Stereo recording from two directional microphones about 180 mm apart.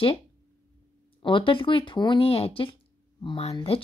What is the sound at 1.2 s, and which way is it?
Speech, 30° left (ahead or behind).